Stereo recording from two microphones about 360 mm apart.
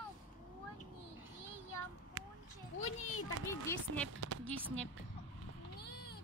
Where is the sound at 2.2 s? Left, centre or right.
Right.